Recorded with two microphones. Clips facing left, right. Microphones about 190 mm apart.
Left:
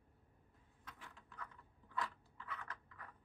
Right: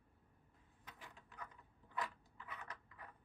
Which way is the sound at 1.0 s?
15° right (ahead or behind).